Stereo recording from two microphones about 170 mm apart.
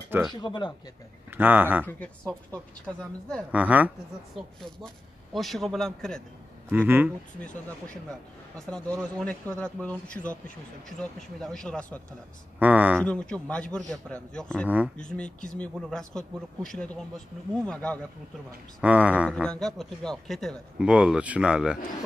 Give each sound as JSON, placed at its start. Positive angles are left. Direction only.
{"t": 0.3, "sound": "speech", "side_deg": 25}
{"t": 1.3, "sound": "speech", "side_deg": -10}
{"t": 1.9, "sound": "speech", "side_deg": 10}
{"t": 2.9, "sound": "a man's voice", "side_deg": -5}
{"t": 4.6, "sound": "a man's voice", "side_deg": 0}
{"t": 6.7, "sound": "speech", "side_deg": -10}
{"t": 8.5, "sound": "a man's voice", "side_deg": 5}
{"t": 12.5, "sound": "speech", "side_deg": -10}
{"t": 13.0, "sound": "a man's voice", "side_deg": 5}
{"t": 18.8, "sound": "speech", "side_deg": -5}
{"t": 19.3, "sound": "a man's voice", "side_deg": 5}